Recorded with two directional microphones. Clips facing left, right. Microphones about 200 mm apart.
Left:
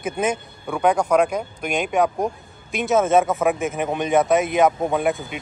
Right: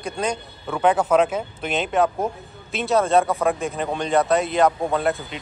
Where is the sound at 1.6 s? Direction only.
15° left (ahead or behind).